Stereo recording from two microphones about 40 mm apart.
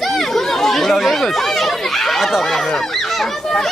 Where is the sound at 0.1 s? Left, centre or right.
Centre.